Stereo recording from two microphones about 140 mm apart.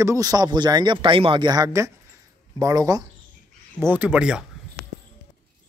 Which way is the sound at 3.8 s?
10° right (ahead or behind).